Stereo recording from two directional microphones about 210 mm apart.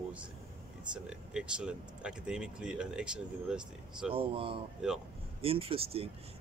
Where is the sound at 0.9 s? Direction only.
5° right (ahead or behind).